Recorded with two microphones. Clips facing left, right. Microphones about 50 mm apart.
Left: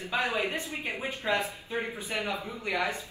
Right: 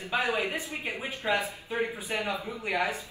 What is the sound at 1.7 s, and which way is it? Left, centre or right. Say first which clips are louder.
Speech: right 2 dB; right.